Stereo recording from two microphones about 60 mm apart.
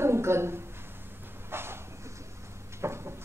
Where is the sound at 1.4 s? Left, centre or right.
Right.